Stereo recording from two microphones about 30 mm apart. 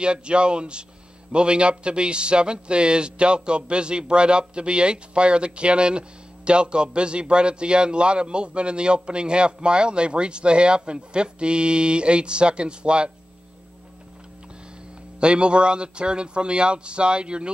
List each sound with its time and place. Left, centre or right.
0.0 s a man's voice: right
15.1 s a man's voice: right